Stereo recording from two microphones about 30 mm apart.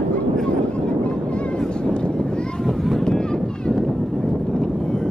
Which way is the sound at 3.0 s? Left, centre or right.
Left.